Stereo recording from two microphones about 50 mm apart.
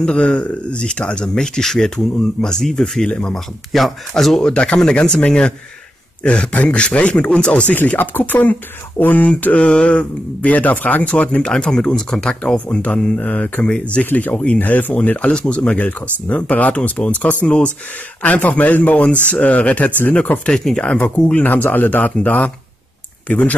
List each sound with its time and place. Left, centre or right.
0.0 s speech: centre
3.1 s speech: left
3.3 s speech: centre
4.5 s speech: centre
7.7 s speech: left; by 12.4 s centre
12.5 s speech: left
14.0 s speech: left
14.3 s speech: left
20.4 s speech: centre
21.4 s speech: left